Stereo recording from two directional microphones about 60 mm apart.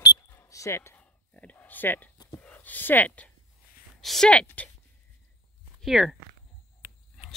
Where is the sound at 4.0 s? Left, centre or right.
Centre.